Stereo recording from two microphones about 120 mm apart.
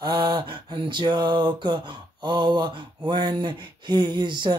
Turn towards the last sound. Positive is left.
turn(degrees=-40)  # may be behind; listen again after turning